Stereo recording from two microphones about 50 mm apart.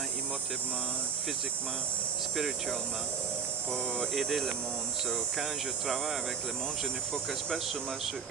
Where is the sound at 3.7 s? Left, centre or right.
Left.